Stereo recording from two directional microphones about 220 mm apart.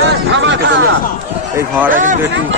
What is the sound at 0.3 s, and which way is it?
Chatter, 55° right (ahead or behind).